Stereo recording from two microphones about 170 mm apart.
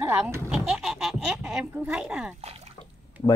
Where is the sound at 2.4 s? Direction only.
35° right (ahead or behind).